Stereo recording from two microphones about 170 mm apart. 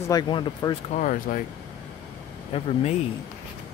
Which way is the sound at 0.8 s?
50° left (ahead or behind).